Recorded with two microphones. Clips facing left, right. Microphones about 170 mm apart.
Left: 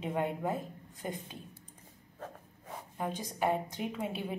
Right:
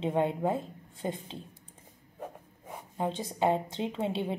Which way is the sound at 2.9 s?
25° right (ahead or behind).